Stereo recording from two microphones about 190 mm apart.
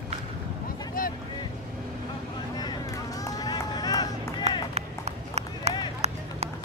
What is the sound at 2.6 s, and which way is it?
Run, 20° left (ahead or behind).